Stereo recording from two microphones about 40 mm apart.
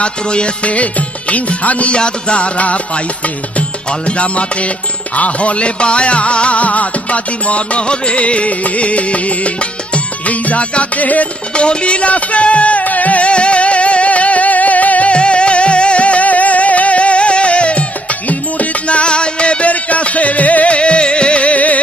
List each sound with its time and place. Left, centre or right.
0.0 s music: left
2.0 s music: left
11.5 s music: left
15.1 s music: left